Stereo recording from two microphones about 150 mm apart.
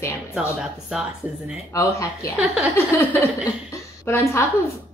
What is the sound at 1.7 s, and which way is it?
Speech, 20° left (ahead or behind).